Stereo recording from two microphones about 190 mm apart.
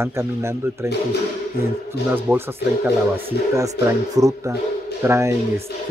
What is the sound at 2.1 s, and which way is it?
Speech, 10° right (ahead or behind).